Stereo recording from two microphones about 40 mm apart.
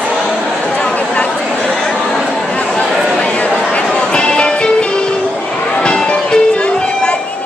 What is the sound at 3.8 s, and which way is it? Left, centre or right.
Music, left.